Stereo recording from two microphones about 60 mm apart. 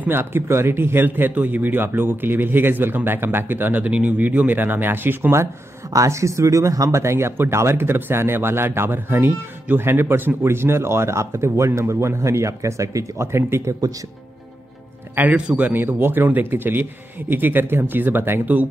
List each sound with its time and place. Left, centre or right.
0.2 s speech: right
5.9 s speech: right
13.3 s speech: right
15.1 s speech: right
15.7 s speech: right